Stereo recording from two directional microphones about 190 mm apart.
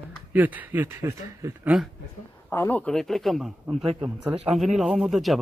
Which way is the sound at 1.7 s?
Centre (ahead or behind).